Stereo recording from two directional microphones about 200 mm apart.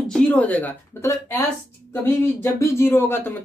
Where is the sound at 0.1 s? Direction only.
5° left (ahead or behind).